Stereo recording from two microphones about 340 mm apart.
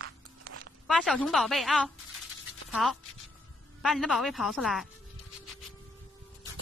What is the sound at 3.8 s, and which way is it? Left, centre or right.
A woman's voice, centre.